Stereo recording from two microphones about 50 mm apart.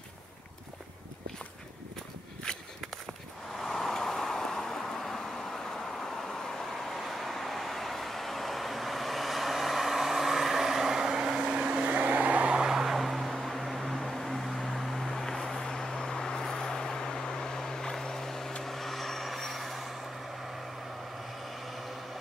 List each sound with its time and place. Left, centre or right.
2.5 s a sound: centre
3.6 s vehicle: centre
6.4 s vehicle: centre
12.7 s vehicle: centre